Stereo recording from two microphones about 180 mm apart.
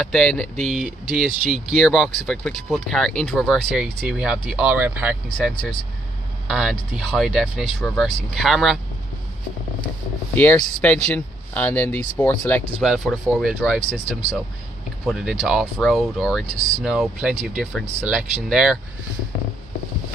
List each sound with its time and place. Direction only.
0.0 s speech: 5° left (ahead or behind)
10.3 s speech: 10° left (ahead or behind)
12.8 s speech: centre (ahead or behind)
15.0 s speech: 5° right (ahead or behind)
16.4 s speech: 35° right (ahead or behind)
16.8 s speech: 5° right (ahead or behind)